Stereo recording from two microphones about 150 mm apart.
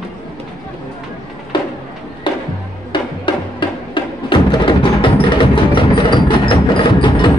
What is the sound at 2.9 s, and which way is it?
Music, 30° left (ahead or behind).